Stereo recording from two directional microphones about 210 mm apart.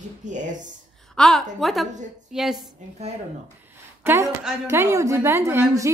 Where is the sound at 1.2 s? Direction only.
Centre (ahead or behind).